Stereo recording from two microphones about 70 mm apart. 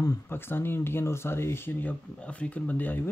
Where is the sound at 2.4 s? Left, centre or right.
Left.